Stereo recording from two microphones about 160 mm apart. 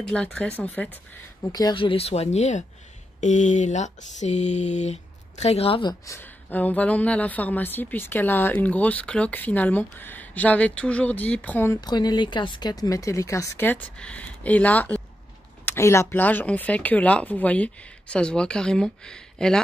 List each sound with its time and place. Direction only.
0.0 s a woman's voice: 5° left (ahead or behind)
1.5 s speech: 25° left (ahead or behind); by 2.6 s 45° left (ahead or behind)
3.2 s a sound: 50° left (ahead or behind)
5.4 s speech: 40° left (ahead or behind)
6.0 s a woman's voice: 10° left (ahead or behind)
11.8 s a woman's voice: 25° left (ahead or behind); by 19.6 s 5° left (ahead or behind)